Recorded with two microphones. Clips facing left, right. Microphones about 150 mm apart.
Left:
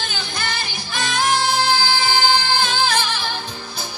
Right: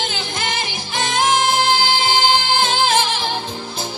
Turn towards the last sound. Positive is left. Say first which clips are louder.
# right 3 dB
turn(degrees=-25)  # may be behind; listen again after turning